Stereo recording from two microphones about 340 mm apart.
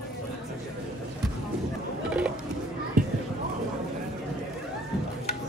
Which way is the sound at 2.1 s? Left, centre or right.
Centre.